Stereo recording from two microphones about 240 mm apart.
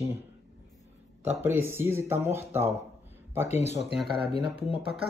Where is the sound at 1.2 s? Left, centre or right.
Centre.